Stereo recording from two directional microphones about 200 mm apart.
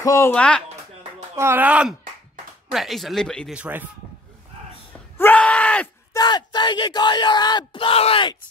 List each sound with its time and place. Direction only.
0.0 s speech: 15° left (ahead or behind)
1.3 s speech: 10° right (ahead or behind)
5.1 s groan: 10° left (ahead or behind)
6.1 s speech: 20° left (ahead or behind)